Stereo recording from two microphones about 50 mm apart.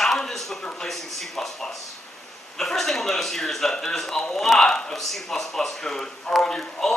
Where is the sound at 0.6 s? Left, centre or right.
Centre.